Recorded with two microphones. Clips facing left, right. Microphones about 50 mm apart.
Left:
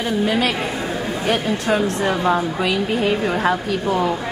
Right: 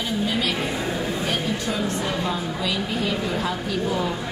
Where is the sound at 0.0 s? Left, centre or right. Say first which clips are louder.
Left 5 dB; left.